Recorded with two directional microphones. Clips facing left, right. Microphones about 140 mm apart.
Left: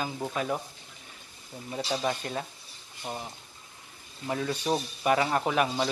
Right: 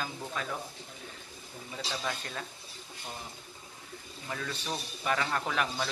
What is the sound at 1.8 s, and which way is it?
Speech, 25° left (ahead or behind).